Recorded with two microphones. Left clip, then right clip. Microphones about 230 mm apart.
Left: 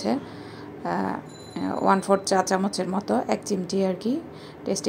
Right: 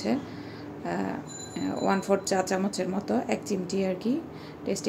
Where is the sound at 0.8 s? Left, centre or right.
Centre.